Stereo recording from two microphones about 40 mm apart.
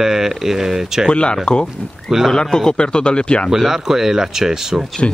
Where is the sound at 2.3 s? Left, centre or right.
Centre.